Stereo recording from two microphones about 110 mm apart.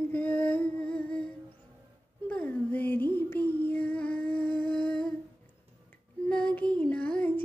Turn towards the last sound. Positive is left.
turn(degrees=15)  # may be behind; listen again after turning